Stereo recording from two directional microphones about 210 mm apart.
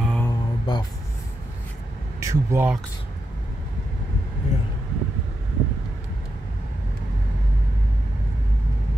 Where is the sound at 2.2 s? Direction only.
10° right (ahead or behind).